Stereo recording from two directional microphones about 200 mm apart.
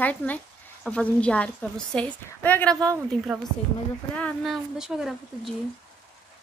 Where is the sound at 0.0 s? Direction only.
10° left (ahead or behind).